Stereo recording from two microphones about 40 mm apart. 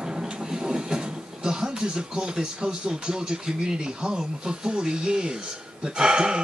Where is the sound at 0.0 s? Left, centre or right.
Centre.